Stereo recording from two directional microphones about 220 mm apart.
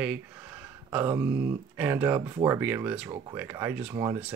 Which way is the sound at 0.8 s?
15° right (ahead or behind).